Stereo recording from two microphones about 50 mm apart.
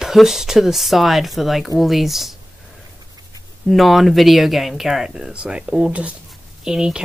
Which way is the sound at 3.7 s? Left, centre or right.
Centre.